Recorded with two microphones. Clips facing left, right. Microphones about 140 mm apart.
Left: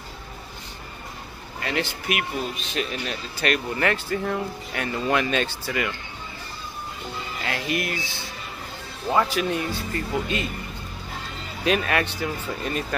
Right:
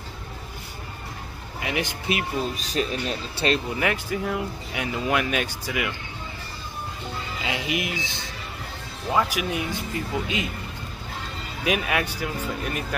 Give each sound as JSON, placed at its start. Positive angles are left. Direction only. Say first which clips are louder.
{"t": 1.6, "sound": "speech", "louder": "left 1 dB", "side_deg": -15}
{"t": 2.0, "sound": "speech", "louder": "right 1 dB", "side_deg": -35}
{"t": 3.7, "sound": "speech", "louder": "left 1 dB", "side_deg": -10}
{"t": 7.4, "sound": "speech", "louder": "left 1 dB", "side_deg": -15}
{"t": 9.1, "sound": "speech", "louder": "left 2 dB", "side_deg": -5}
{"t": 11.6, "sound": "speech", "louder": "left 2 dB", "side_deg": -10}